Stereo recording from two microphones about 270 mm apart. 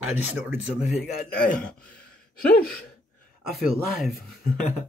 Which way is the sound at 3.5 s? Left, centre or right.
Centre.